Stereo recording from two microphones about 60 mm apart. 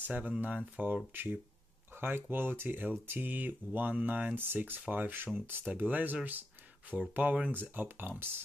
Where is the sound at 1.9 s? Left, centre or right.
Right.